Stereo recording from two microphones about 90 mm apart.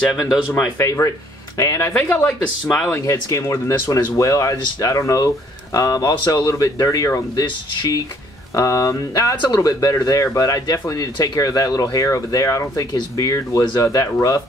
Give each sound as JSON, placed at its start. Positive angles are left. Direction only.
{"t": 0.1, "sound": "speech", "side_deg": 0}
{"t": 0.7, "sound": "speech", "side_deg": 35}
{"t": 2.0, "sound": "speech", "side_deg": 20}
{"t": 3.1, "sound": "speech", "side_deg": 35}
{"t": 7.7, "sound": "speech", "side_deg": 50}
{"t": 8.5, "sound": "speech", "side_deg": 40}